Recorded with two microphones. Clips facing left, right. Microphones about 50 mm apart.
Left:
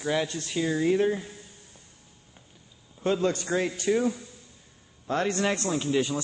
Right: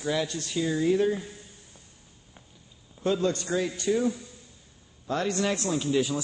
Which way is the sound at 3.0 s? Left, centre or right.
Left.